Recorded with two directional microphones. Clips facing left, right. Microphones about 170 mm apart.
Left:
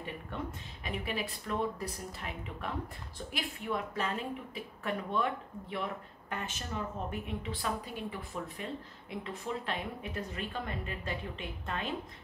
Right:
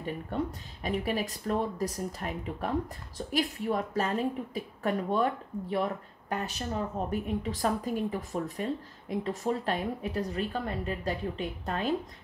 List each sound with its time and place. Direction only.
0.8 s speech: 40° right (ahead or behind)